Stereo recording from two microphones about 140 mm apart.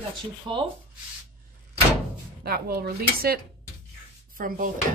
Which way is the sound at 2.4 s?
90° right.